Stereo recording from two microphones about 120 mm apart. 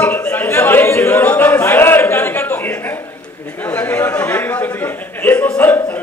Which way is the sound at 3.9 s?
15° left (ahead or behind).